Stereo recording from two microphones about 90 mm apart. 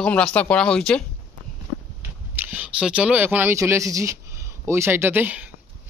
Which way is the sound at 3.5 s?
35° right (ahead or behind).